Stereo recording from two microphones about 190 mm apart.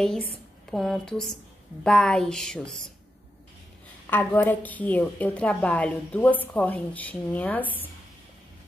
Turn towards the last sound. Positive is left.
turn(degrees=10)  # may be behind; listen again after turning